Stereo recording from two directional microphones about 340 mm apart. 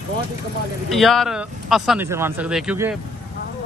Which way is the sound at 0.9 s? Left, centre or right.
Centre.